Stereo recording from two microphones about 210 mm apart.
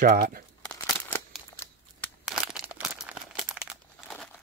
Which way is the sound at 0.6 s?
5° left (ahead or behind).